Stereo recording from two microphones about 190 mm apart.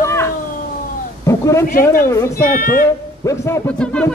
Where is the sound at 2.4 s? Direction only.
45° left (ahead or behind).